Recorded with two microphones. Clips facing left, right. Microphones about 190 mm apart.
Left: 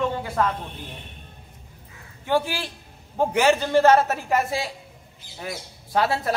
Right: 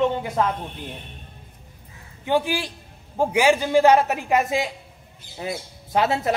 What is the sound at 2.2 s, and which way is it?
A man's voice, 15° right (ahead or behind).